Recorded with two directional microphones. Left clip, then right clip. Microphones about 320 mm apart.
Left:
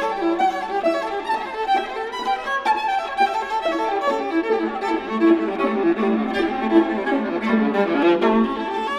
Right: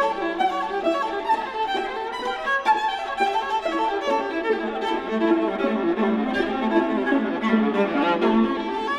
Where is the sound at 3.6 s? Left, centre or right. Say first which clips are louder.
Left 2 dB; left.